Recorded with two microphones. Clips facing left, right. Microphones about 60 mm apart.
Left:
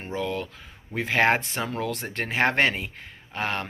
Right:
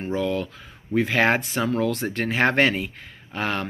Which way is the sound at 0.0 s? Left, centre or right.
Left.